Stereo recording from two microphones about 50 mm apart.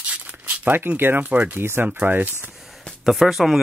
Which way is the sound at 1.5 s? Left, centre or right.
Right.